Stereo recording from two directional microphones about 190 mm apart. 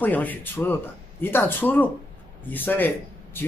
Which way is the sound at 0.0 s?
10° left (ahead or behind).